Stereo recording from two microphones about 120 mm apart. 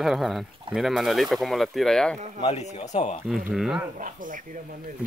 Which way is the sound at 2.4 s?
70° left (ahead or behind).